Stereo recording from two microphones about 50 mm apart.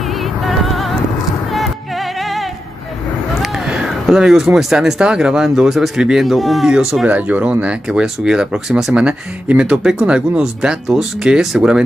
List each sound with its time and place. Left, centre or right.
0.0 s music: centre
3.6 s a sound: centre
4.6 s speech: centre
6.7 s speech: centre
7.1 s speech: right
8.0 s speech: centre
8.9 s speech: right